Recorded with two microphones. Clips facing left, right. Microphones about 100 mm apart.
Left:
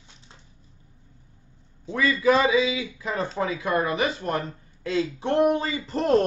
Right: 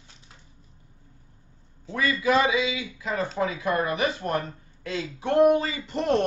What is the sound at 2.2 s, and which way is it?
A woman's voice, 30° left (ahead or behind).